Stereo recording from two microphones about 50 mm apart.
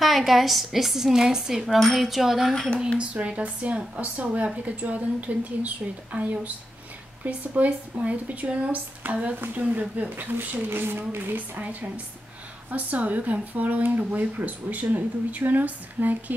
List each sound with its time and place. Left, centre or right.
0.0 s a woman's voice: centre
1.8 s a woman's voice: centre
3.0 s speech: right